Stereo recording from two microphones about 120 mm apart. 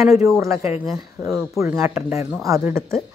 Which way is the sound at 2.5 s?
20° right (ahead or behind).